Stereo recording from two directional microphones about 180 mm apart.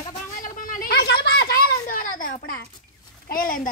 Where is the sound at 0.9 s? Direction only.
70° left (ahead or behind); by 3.6 s 50° left (ahead or behind).